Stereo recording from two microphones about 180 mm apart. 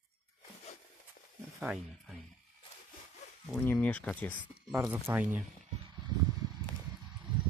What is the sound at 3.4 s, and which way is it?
Speech, 5° left (ahead or behind).